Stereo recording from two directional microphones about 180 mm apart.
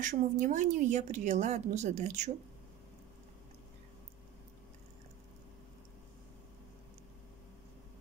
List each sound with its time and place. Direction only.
0.0 s speech: 45° right (ahead or behind)